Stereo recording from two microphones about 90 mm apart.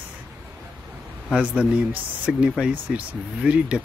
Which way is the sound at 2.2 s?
10° right (ahead or behind).